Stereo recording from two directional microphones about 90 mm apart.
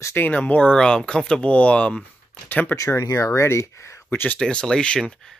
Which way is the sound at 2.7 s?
35° left (ahead or behind).